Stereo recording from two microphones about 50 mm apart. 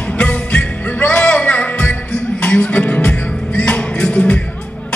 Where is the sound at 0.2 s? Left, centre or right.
Left.